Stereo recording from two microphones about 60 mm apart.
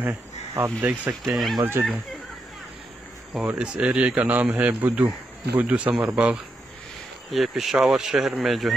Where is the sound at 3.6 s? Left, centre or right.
Centre.